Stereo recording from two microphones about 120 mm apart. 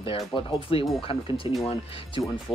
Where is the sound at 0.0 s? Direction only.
50° left (ahead or behind).